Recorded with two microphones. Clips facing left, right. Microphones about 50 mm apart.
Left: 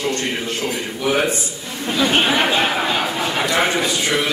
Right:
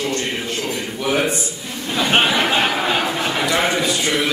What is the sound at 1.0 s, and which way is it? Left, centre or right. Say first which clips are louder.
Speech: left 1 dB; centre.